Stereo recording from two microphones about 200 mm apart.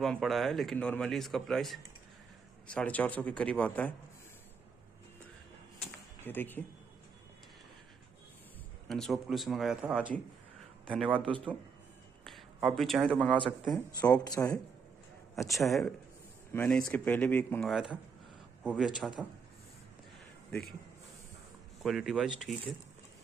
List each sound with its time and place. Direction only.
0.0 s a man's voice: centre (ahead or behind)
6.2 s speech: 10° left (ahead or behind)
8.8 s a man's voice: centre (ahead or behind)
11.2 s a man's voice: 25° right (ahead or behind)
12.6 s a man's voice: centre (ahead or behind)
14.1 s speech: 20° left (ahead or behind)
15.3 s a man's voice: centre (ahead or behind)
21.8 s a man's voice: centre (ahead or behind)